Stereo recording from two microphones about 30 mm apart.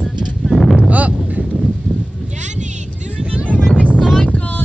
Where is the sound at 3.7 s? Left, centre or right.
Left.